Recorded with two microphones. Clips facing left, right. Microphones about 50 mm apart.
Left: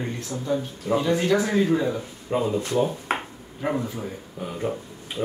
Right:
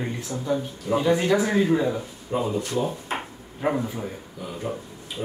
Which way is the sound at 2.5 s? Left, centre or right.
Left.